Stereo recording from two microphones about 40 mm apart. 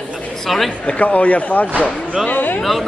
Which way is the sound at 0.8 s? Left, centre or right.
Left.